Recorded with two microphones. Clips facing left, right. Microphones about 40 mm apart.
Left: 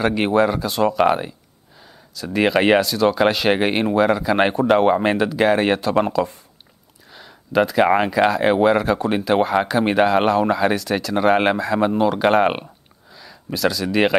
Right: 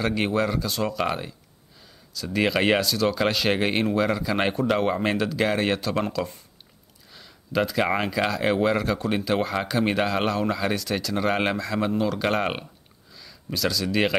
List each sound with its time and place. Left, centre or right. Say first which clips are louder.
0.0 s speech: left 7 dB; left
11.1 s speech: left 8 dB; left